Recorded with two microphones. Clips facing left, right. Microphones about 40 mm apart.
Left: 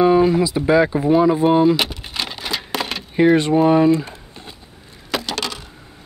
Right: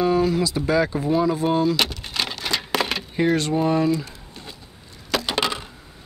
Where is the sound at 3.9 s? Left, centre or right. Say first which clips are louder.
Left 6 dB; left.